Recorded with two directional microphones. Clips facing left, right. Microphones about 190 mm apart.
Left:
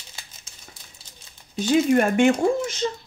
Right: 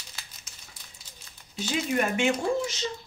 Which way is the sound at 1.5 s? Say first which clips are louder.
Left 9 dB; 50° left (ahead or behind).